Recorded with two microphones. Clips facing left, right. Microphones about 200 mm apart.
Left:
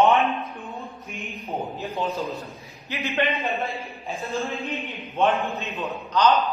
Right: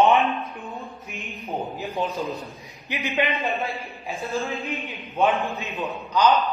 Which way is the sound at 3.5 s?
Centre (ahead or behind).